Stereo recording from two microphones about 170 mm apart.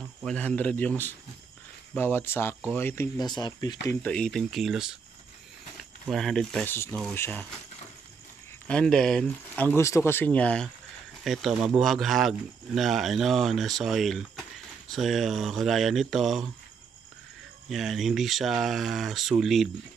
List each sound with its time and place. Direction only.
0.2 s speech: 5° left (ahead or behind)
3.2 s speech: 25° left (ahead or behind)
3.8 s speech: 5° left (ahead or behind)
6.0 s speech: centre (ahead or behind)
8.6 s speech: 5° left (ahead or behind)
17.6 s speech: centre (ahead or behind)